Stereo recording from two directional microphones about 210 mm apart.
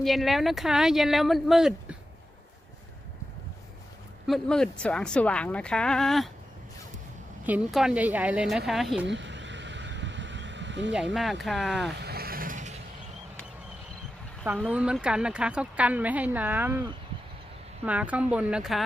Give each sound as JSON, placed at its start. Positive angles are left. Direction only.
{"t": 0.0, "sound": "speech", "side_deg": 0}
{"t": 4.3, "sound": "speech", "side_deg": 5}
{"t": 7.4, "sound": "speech", "side_deg": -5}
{"t": 9.0, "sound": "vehicle", "side_deg": -60}
{"t": 11.1, "sound": "speech", "side_deg": 0}
{"t": 11.9, "sound": "vehicle", "side_deg": -50}
{"t": 14.4, "sound": "a woman's voice", "side_deg": -5}
{"t": 17.8, "sound": "a woman's voice", "side_deg": -5}